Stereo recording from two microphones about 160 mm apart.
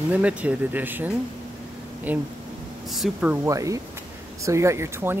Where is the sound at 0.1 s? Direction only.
10° right (ahead or behind).